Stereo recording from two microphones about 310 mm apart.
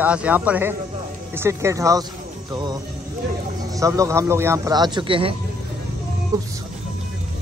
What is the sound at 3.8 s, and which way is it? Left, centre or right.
A man's voice, centre.